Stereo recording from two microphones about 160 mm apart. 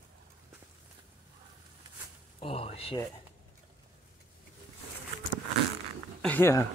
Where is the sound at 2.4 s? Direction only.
35° left (ahead or behind).